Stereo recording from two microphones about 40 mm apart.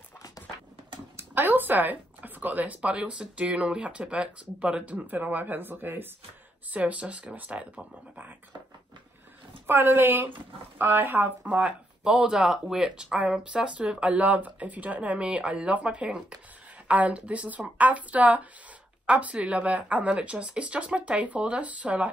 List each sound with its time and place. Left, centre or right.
1.1 s speech: right
4.9 s speech: right
6.7 s speech: right
9.7 s speech: right
12.4 s speech: centre
13.9 s speech: right